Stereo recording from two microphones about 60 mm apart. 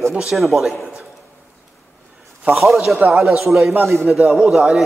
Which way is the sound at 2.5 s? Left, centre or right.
Centre.